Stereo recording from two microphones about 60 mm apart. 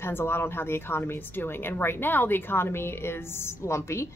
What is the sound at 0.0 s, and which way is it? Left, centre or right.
A woman's voice, left.